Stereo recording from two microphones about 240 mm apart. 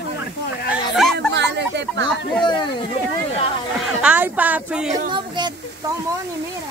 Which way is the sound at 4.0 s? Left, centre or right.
Centre.